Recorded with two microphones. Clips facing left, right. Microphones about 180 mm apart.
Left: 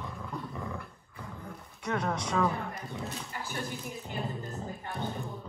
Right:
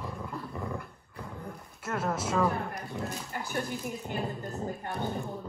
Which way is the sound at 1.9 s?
5° right (ahead or behind).